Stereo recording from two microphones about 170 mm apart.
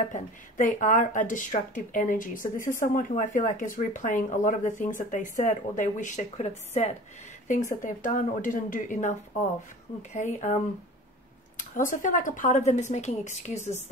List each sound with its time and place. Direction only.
0.1 s speech: 50° left (ahead or behind)
11.7 s speech: 50° left (ahead or behind)